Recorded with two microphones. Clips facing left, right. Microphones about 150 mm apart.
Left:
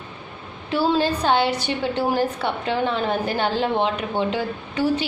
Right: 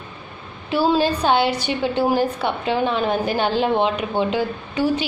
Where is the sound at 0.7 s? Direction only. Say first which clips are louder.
Right 2 dB; 15° right (ahead or behind).